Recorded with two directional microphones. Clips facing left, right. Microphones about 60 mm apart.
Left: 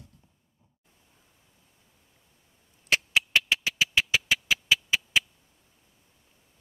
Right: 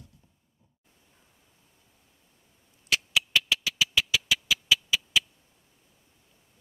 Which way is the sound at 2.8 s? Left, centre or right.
Left.